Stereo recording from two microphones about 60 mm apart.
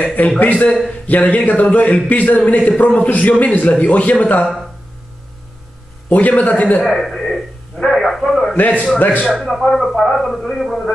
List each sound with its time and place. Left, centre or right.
0.0 s a man's voice: left
6.0 s a man's voice: left
6.8 s a man's voice: centre
8.5 s a man's voice: left
9.3 s a man's voice: centre